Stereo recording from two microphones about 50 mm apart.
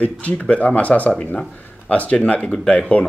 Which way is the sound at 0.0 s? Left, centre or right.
Left.